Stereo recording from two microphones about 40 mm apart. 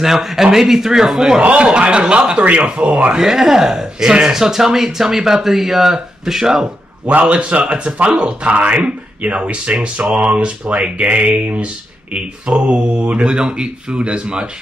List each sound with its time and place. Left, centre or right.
0.0 s speech: centre
1.4 s speech: right
3.2 s speech: centre
7.1 s speech: right